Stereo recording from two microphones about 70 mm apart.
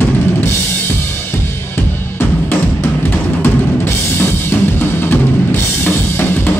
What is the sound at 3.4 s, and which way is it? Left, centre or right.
Music, left.